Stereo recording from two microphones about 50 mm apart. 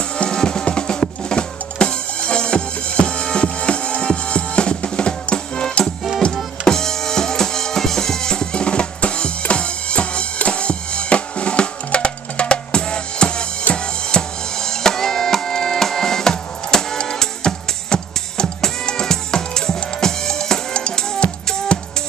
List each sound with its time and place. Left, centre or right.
0.2 s drum: centre
6.2 s music: centre